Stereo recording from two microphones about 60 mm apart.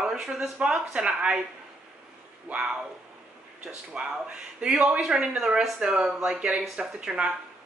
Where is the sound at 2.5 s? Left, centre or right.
Right.